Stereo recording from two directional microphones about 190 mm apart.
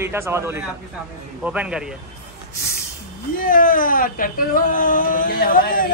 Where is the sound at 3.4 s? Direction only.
45° left (ahead or behind).